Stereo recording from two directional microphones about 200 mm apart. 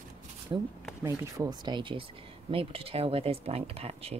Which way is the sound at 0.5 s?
20° right (ahead or behind).